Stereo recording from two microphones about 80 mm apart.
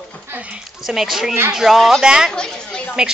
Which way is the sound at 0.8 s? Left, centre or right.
Centre.